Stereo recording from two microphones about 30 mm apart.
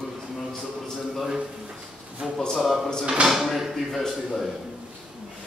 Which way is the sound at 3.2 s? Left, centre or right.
Centre.